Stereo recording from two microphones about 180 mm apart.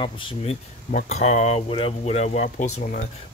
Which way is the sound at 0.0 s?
30° left (ahead or behind).